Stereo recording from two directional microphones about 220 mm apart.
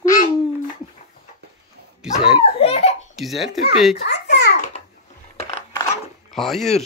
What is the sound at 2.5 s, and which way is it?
Belly laugh, 25° left (ahead or behind).